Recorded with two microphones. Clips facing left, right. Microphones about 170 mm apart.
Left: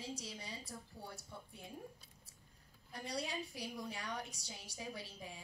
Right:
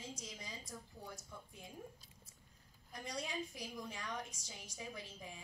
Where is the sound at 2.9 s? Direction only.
35° left (ahead or behind).